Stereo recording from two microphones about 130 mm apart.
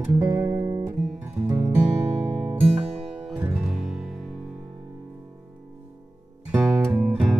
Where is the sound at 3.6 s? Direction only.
Centre (ahead or behind).